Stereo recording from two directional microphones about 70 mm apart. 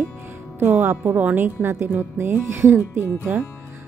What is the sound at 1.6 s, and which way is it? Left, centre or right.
Speech, right.